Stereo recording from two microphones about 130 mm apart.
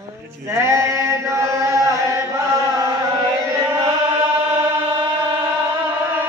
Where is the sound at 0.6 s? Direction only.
20° right (ahead or behind).